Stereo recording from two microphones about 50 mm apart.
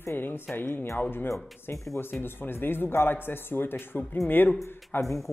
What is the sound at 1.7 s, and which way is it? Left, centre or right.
Speech, left.